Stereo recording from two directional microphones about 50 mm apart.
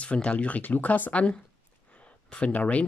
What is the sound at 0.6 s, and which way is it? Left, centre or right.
Speech, left.